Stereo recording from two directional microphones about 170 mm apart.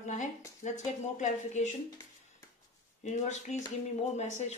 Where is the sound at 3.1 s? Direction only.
45° left (ahead or behind).